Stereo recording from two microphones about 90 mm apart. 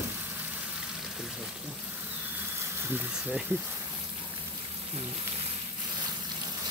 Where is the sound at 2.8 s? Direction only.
20° right (ahead or behind).